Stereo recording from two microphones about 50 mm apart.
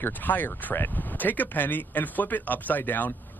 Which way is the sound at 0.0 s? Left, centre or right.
Left.